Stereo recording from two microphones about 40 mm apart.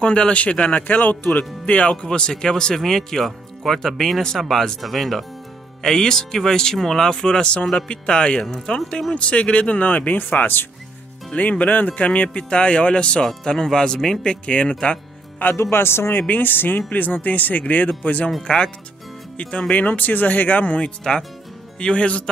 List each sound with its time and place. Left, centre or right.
0.0 s speech: left
0.8 s speech: left
1.7 s speech: left
11.3 s speech: left; by 14.2 s centre
14.2 s speech: left
15.5 s speech: left
16.2 s speech: left
19.3 s speech: left
19.7 s speech: left
21.0 s speech: centre